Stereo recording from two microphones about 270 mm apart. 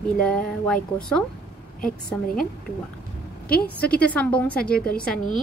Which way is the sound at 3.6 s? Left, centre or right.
Centre.